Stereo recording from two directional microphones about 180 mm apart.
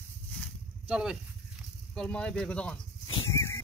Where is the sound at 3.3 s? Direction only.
15° left (ahead or behind).